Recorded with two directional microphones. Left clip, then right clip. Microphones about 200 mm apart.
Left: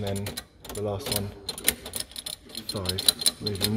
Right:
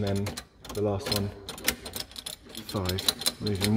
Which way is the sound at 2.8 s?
15° right (ahead or behind).